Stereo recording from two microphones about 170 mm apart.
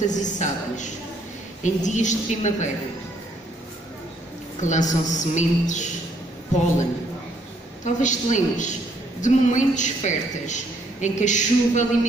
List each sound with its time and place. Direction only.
0.0 s a woman's voice: 45° left (ahead or behind)
4.6 s a woman's voice: 45° left (ahead or behind)
7.8 s a woman's voice: 45° left (ahead or behind)